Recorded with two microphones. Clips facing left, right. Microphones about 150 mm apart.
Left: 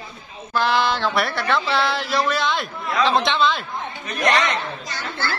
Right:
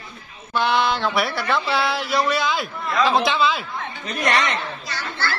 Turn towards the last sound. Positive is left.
turn(degrees=15)  # may be behind; listen again after turning